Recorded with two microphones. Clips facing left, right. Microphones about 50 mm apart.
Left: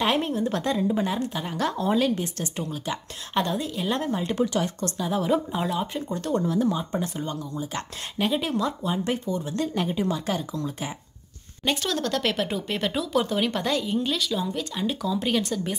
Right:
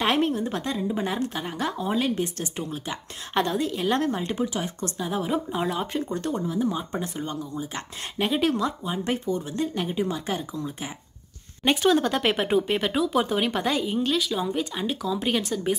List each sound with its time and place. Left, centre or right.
0.0 s a woman's voice: right
0.7 s speech: centre
1.0 s a woman's voice: right
1.5 s speech: centre
2.0 s a woman's voice: right
4.5 s speech: centre
4.7 s speech: right
6.3 s speech: centre
8.4 s a woman's voice: right
10.5 s speech: centre